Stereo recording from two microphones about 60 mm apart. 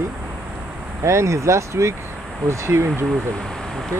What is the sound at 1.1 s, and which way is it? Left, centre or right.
Speech, right.